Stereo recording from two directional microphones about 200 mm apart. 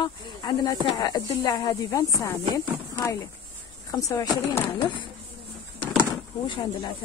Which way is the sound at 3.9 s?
20° left (ahead or behind).